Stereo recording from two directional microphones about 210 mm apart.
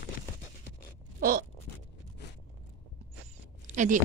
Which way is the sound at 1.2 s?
45° right (ahead or behind).